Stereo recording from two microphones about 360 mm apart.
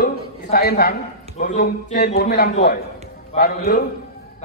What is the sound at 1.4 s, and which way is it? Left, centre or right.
A man's voice, left.